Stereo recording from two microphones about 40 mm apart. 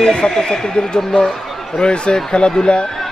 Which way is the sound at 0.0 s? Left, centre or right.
Left.